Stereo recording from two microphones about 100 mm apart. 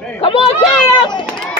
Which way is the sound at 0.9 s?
50° left (ahead or behind).